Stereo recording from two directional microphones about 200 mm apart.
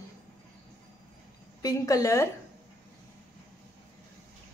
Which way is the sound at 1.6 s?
15° left (ahead or behind).